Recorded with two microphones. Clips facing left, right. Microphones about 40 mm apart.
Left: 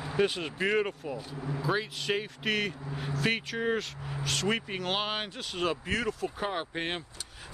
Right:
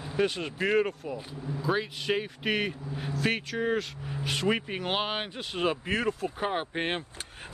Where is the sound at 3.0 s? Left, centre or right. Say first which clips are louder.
Right 1 dB; centre.